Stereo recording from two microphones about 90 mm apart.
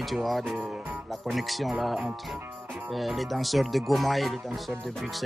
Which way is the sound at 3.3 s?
Centre (ahead or behind).